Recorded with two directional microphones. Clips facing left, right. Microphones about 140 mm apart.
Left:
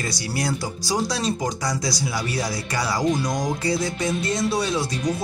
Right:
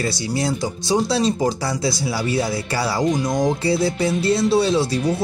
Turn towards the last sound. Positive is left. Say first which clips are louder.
# right 6 dB
turn(degrees=-30)  # may be behind; listen again after turning